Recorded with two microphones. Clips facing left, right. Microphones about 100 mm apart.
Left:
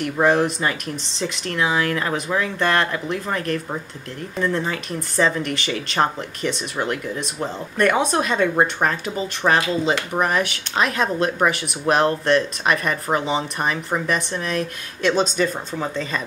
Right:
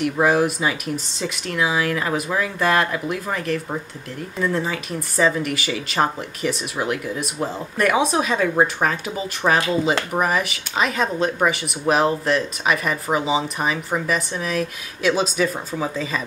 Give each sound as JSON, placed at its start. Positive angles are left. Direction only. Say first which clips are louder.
{"t": 0.0, "sound": "speech", "louder": "even", "side_deg": -5}